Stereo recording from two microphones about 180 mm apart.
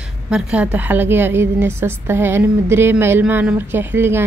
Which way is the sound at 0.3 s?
5° right (ahead or behind).